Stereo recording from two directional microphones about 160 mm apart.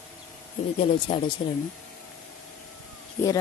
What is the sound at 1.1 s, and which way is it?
Speech, 35° left (ahead or behind).